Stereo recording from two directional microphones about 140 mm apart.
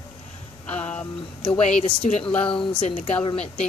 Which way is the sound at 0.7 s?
10° left (ahead or behind).